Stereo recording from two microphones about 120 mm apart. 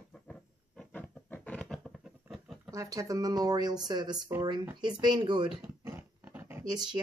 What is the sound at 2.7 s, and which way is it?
Speech, 30° right (ahead or behind).